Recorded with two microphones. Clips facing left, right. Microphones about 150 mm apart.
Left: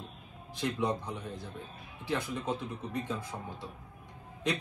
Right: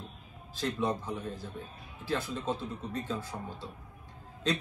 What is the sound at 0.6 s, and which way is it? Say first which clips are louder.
A man's voice: even; 20° left (ahead or behind).